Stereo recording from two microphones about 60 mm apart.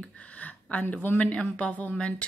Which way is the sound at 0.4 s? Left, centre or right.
Left.